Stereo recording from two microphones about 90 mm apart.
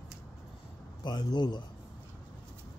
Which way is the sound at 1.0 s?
55° left (ahead or behind).